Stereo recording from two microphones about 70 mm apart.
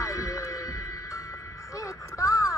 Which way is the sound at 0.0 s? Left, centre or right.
Left.